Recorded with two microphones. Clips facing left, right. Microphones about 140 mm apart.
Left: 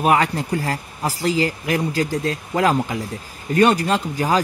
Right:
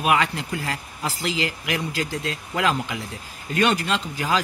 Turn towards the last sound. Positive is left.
turn(degrees=40)  # may be behind; listen again after turning